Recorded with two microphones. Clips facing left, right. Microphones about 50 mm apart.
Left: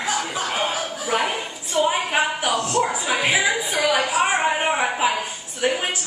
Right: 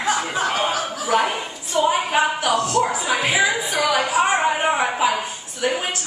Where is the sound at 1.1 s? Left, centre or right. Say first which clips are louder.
Right 3 dB; centre.